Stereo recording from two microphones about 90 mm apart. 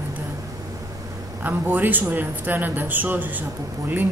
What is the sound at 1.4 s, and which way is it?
Speech, 20° right (ahead or behind).